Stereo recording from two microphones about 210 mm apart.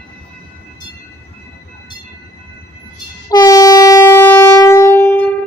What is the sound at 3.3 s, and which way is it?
Train, 15° left (ahead or behind).